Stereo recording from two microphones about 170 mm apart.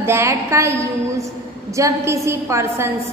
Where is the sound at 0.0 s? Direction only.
15° right (ahead or behind).